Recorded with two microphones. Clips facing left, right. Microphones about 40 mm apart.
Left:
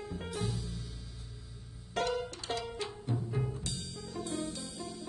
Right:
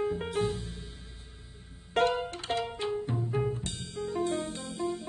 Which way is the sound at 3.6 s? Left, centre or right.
Right.